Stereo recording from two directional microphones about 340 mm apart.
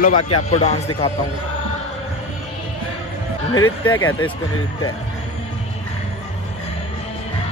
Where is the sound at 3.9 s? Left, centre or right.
Left.